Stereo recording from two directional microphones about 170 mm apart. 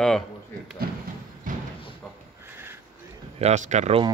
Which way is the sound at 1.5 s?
50° right (ahead or behind).